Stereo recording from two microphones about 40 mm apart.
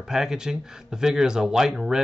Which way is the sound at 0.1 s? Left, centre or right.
Centre.